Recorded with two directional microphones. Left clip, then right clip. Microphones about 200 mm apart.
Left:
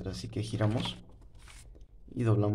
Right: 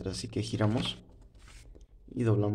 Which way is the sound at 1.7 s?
5° right (ahead or behind).